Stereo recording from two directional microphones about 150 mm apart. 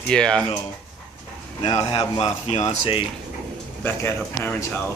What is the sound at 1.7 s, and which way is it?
Speech, 45° left (ahead or behind).